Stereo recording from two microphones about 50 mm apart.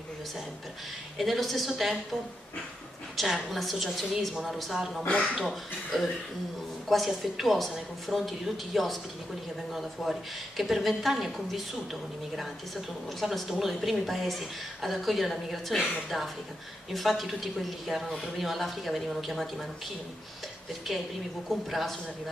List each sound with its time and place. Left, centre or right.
1.1 s a woman's voice: centre
3.2 s a woman's voice: centre
5.0 s speech: left
5.5 s a woman's voice: centre
10.0 s a woman's voice: centre
13.2 s a woman's voice: centre
16.9 s a woman's voice: centre
21.5 s a woman's voice: centre